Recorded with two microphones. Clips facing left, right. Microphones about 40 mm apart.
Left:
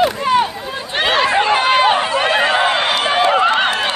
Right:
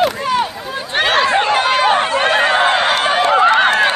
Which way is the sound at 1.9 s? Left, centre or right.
Right.